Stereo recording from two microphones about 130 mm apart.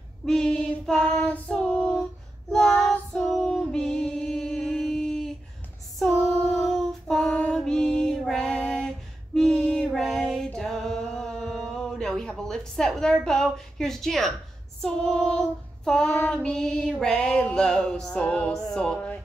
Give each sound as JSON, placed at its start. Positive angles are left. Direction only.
{"t": 0.2, "sound": "female singing", "side_deg": 5}
{"t": 14.8, "sound": "child singing", "side_deg": 5}